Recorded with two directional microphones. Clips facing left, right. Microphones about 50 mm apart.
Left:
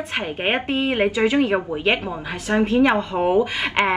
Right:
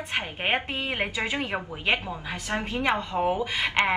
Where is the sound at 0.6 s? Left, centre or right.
Left.